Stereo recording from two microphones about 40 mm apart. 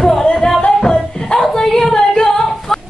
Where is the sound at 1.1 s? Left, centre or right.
Centre.